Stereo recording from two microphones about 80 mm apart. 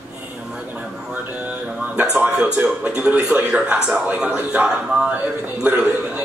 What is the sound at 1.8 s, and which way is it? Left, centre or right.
A man's voice, centre.